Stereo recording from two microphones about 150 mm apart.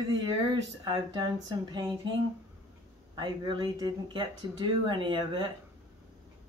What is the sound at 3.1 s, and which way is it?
Speech, 30° right (ahead or behind).